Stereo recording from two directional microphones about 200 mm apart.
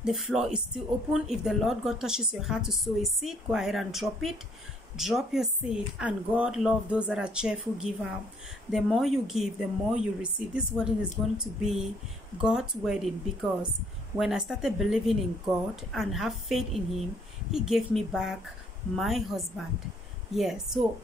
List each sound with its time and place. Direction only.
0.0 s a woman's voice: centre (ahead or behind)